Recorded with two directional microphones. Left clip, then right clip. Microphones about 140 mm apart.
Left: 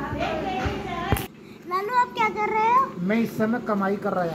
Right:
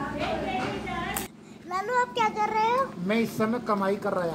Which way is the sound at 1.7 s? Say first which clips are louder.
Left 4 dB; 65° right (ahead or behind).